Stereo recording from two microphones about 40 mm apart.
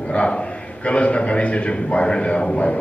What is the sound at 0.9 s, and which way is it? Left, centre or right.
A man's voice, left.